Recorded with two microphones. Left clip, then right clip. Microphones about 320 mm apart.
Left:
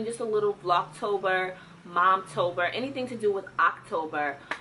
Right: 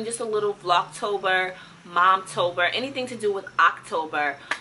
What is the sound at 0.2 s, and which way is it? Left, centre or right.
Speech, centre.